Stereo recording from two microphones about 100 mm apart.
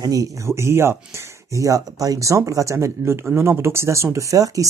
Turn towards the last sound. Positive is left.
turn(degrees=-35)  # may be behind; listen again after turning